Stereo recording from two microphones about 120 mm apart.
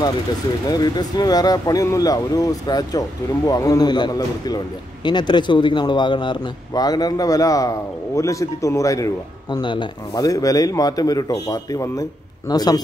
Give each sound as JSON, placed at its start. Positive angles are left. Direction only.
{"t": 0.7, "sound": "speech", "side_deg": 35}
{"t": 9.6, "sound": "speech", "side_deg": 40}